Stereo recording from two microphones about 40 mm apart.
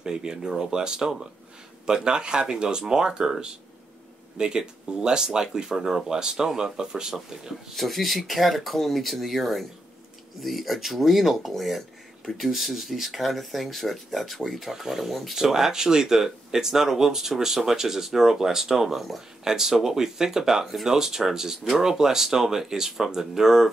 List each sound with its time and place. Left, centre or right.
0.0 s speech: centre
7.7 s speech: centre